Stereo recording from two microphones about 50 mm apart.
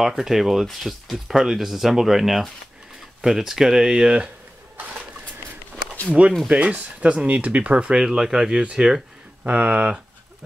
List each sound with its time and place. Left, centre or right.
0.0 s speech: centre
6.2 s speech: right
7.9 s speech: centre